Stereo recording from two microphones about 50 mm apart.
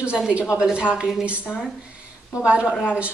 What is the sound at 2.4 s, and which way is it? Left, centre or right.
Speech, right.